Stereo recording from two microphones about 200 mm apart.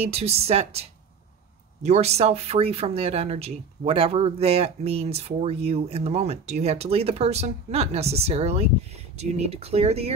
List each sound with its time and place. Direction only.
0.0 s speech: 30° right (ahead or behind)